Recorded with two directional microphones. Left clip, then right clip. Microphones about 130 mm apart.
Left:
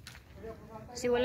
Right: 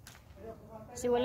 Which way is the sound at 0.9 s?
25° right (ahead or behind).